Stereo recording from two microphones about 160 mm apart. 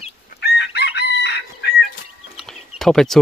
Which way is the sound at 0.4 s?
90° left.